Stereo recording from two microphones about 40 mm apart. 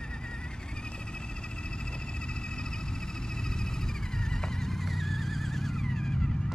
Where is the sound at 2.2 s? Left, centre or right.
Left.